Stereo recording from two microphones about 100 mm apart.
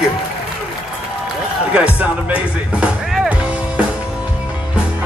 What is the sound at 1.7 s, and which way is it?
Speech, 15° right (ahead or behind).